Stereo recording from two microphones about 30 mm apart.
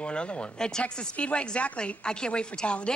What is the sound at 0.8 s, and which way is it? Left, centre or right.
A woman's voice, left.